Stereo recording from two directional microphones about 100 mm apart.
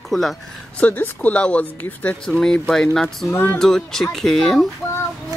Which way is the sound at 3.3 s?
20° left (ahead or behind).